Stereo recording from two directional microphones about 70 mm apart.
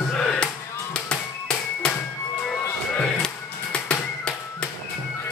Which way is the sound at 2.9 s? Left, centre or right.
Centre.